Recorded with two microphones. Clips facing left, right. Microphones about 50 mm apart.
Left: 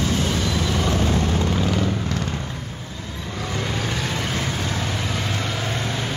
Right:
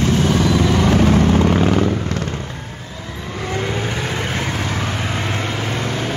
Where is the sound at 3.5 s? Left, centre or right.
Right.